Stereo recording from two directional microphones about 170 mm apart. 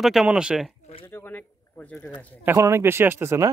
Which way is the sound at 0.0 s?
Centre (ahead or behind).